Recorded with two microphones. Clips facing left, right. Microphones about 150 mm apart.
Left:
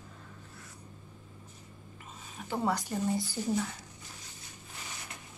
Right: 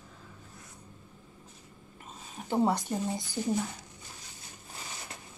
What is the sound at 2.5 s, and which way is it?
Speech, 25° right (ahead or behind).